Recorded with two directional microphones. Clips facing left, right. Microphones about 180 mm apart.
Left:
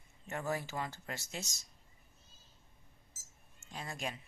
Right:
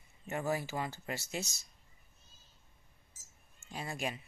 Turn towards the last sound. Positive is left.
turn(degrees=-5)  # may be behind; listen again after turning